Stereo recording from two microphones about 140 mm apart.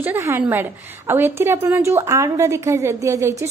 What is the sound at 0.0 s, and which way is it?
A woman's voice, 15° right (ahead or behind).